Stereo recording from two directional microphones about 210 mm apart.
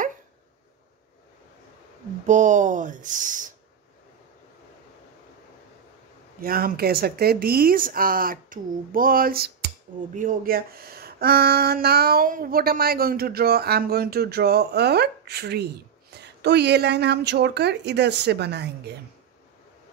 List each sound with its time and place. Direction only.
2.2 s speech: 35° right (ahead or behind)
6.4 s speech: 45° right (ahead or behind)
16.1 s a sound: 55° right (ahead or behind)
16.4 s speech: 55° right (ahead or behind)